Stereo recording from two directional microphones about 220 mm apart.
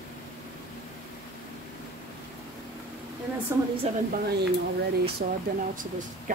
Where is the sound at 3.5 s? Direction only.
10° right (ahead or behind).